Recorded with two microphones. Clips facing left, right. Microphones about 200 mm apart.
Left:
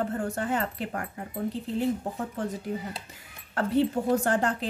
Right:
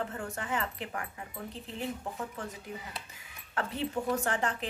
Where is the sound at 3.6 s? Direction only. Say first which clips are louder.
Left 8 dB; 35° left (ahead or behind).